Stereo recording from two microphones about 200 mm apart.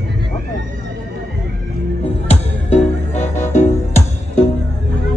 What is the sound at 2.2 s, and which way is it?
Music, 30° left (ahead or behind).